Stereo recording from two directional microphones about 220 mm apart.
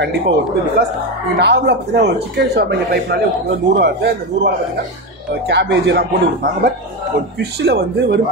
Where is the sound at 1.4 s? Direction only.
50° right (ahead or behind).